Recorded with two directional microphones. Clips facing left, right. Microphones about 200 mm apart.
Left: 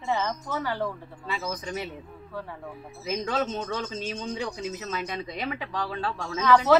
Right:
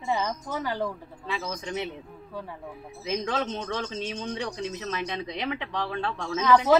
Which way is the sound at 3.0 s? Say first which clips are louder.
Left 1 dB; 5° left (ahead or behind).